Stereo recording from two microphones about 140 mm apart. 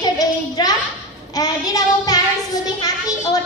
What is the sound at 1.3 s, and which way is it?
Child singing, 25° left (ahead or behind).